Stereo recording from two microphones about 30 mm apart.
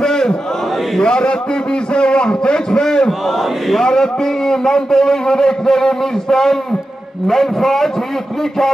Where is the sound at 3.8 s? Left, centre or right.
Left.